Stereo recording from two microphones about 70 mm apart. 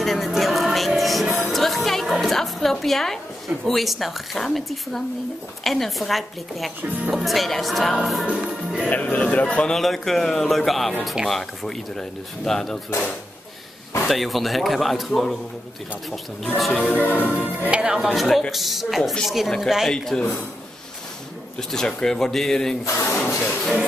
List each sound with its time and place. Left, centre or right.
0.0 s music: centre
5.6 s speech: centre
7.0 s speech: centre
7.2 s speech: centre
8.4 s music: centre
8.9 s speech: left
9.8 s speech: centre
14.0 s speech: centre
16.7 s speech: left
17.6 s speech: centre
19.9 s speech: centre
21.5 s speech: centre
22.8 s speech: left
23.1 s a sound: left